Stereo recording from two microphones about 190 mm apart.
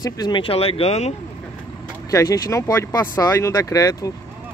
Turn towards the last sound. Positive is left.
turn(degrees=15)  # may be behind; listen again after turning